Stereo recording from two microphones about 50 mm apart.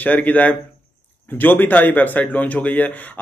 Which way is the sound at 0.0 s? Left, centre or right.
Left.